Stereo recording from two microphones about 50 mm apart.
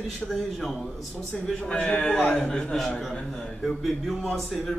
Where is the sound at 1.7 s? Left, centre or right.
Centre.